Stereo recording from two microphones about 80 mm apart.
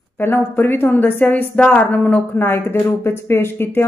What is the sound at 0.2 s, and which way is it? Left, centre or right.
A woman's voice, left.